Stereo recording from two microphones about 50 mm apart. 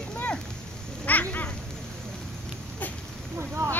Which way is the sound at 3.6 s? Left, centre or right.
Right.